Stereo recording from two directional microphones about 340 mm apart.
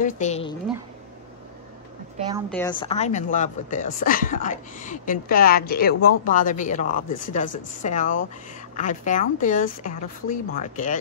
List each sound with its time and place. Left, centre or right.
0.0 s speech: centre
2.1 s a woman's voice: centre
2.5 s speech: centre